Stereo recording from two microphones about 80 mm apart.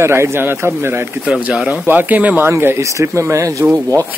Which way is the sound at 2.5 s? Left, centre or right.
Right.